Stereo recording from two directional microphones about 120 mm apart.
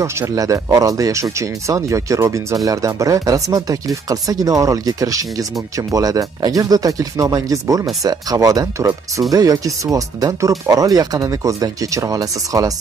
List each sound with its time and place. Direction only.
0.0 s speech: 25° right (ahead or behind)